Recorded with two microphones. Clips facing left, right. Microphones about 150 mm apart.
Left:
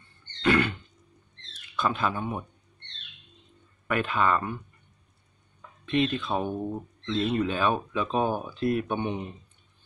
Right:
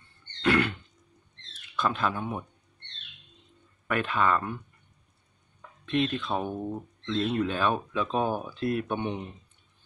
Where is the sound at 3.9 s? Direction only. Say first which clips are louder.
Left 1 dB; centre (ahead or behind).